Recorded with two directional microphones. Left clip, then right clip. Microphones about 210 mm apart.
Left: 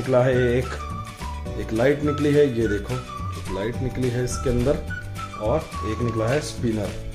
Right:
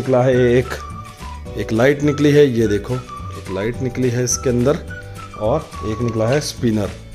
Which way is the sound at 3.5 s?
35° right (ahead or behind).